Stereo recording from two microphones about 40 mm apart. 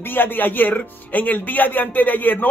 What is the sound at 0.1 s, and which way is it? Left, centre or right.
Speech, left.